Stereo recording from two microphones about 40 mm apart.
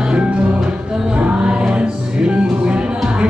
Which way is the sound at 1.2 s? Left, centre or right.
Right.